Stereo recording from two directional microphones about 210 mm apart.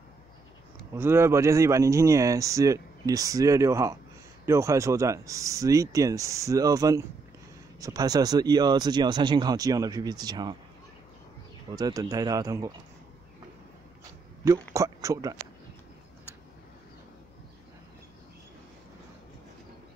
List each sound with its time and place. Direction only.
0.9 s speech: 10° right (ahead or behind)
11.7 s speech: 15° right (ahead or behind)
14.4 s speech: 15° right (ahead or behind)